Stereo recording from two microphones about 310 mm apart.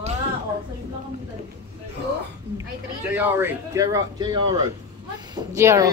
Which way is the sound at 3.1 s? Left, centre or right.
Centre.